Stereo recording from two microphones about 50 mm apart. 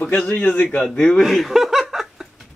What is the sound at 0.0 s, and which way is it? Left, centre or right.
Speech, left.